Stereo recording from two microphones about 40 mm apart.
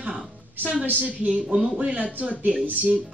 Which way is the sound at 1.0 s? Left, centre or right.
Right.